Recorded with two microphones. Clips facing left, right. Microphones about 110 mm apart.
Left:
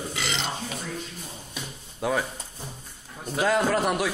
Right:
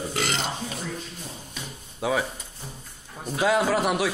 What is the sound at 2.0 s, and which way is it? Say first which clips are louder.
Speech: right 1 dB; 5° right (ahead or behind).